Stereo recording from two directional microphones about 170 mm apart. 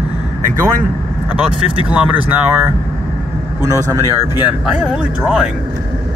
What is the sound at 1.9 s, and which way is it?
Speech, 10° right (ahead or behind).